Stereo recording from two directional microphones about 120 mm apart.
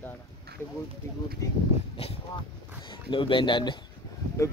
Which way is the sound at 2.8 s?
45° left (ahead or behind).